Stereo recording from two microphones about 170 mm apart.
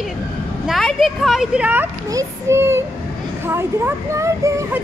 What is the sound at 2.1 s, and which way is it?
Speech, 15° right (ahead or behind).